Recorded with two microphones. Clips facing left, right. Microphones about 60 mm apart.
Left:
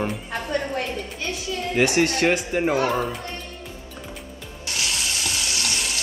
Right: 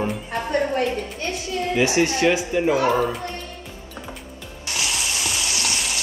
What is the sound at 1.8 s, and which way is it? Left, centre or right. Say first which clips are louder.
Speech: even; left.